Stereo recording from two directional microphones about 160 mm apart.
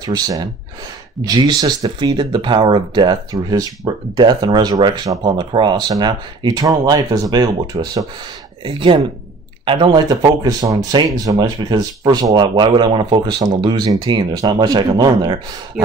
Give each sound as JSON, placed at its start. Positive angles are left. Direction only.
{"t": 0.0, "sound": "speech", "side_deg": -25}